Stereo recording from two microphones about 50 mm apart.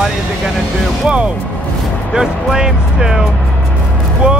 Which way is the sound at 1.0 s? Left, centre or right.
Right.